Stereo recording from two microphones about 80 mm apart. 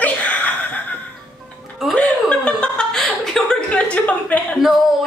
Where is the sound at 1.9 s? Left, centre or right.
Centre.